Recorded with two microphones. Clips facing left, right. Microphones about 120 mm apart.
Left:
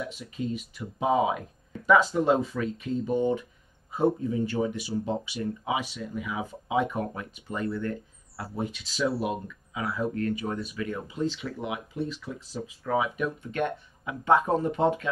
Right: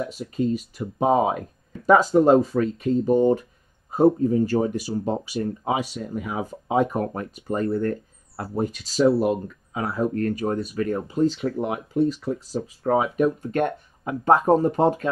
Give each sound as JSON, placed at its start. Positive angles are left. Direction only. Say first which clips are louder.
{"t": 0.0, "sound": "speech", "louder": "right 8 dB", "side_deg": -40}